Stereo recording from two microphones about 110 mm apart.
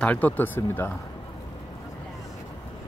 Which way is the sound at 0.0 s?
15° left (ahead or behind).